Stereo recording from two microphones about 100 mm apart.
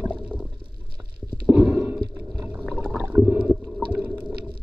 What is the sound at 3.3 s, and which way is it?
Boat, 15° right (ahead or behind).